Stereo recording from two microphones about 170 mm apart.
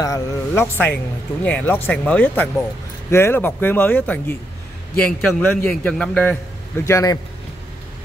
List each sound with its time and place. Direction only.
0.0 s a man's voice: 15° left (ahead or behind)
6.9 s speech: 20° left (ahead or behind)